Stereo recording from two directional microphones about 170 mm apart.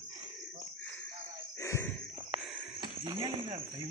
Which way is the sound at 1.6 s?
15° left (ahead or behind).